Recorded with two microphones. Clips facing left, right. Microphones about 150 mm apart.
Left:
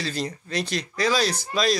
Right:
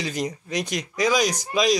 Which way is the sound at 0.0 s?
15° right (ahead or behind).